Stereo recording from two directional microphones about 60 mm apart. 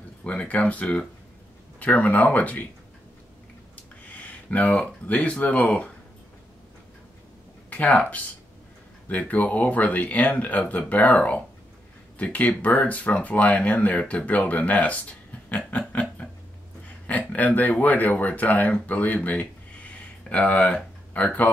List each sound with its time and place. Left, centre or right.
0.2 s speech: left
3.7 s a sound: left
5.0 s speech: left
7.7 s speech: left
15.9 s a sound: left
17.0 s speech: left